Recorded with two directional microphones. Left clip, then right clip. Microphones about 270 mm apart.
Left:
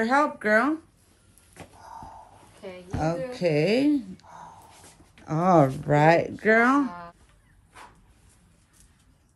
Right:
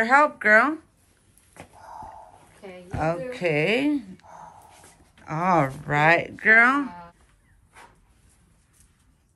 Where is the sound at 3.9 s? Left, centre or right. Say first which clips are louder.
Left 1 dB; right.